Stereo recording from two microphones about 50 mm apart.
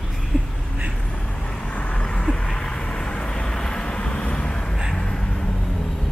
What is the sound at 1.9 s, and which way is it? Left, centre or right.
Vehicle, centre.